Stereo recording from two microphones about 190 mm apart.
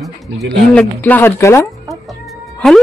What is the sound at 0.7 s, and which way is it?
Speech, 10° left (ahead or behind).